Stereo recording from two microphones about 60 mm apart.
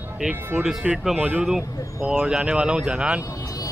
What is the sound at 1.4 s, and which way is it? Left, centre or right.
Speech, centre.